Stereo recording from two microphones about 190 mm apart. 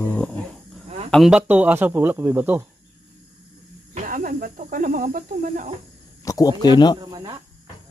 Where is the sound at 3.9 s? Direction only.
45° right (ahead or behind).